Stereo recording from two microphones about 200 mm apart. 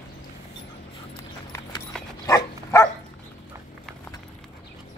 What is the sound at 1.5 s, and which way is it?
Clip-clop, 15° left (ahead or behind).